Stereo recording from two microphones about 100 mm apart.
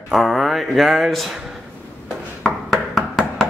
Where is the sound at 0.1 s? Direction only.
Centre (ahead or behind).